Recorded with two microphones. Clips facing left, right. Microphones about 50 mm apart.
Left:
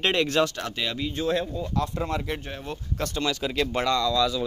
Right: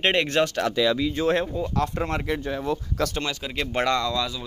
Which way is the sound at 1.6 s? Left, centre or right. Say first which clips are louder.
Right 3 dB; right.